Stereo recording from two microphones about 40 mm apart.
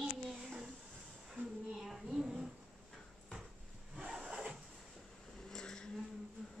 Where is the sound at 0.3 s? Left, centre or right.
Centre.